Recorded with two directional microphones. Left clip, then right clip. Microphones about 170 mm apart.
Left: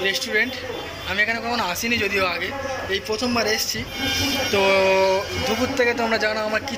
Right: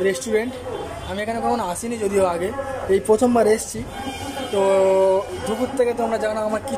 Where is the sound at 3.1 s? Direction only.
60° right (ahead or behind).